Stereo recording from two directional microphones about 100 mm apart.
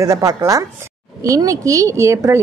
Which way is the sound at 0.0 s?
30° right (ahead or behind).